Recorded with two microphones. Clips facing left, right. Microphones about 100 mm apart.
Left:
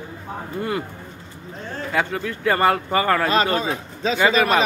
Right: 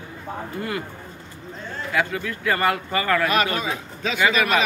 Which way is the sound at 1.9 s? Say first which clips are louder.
Left 1 dB; 30° left (ahead or behind).